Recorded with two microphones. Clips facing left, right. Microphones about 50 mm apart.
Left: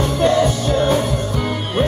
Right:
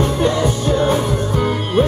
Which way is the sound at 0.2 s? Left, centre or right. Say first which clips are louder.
Left 1 dB; right.